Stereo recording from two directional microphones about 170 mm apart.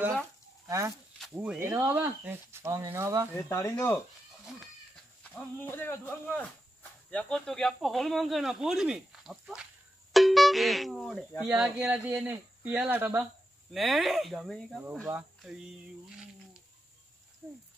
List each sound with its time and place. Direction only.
0.7 s speech: 20° right (ahead or behind)
1.2 s speech: 5° right (ahead or behind)
3.4 s speech: 15° left (ahead or behind)
5.2 s speech: 10° left (ahead or behind); by 13.2 s 10° right (ahead or behind)
13.7 s speech: centre (ahead or behind)
17.4 s speech: 15° right (ahead or behind)